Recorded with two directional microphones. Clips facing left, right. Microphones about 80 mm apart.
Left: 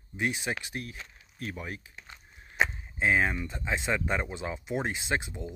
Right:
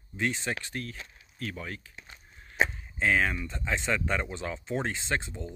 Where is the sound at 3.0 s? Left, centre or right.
Left.